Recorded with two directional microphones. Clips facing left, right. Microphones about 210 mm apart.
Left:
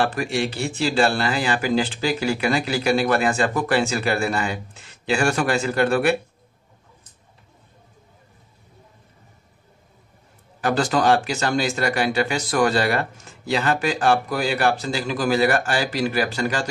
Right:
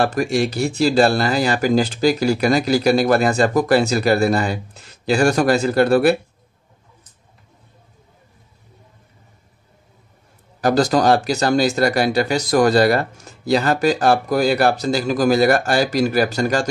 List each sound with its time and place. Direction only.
0.0 s speech: 40° right (ahead or behind)
10.6 s speech: 40° right (ahead or behind)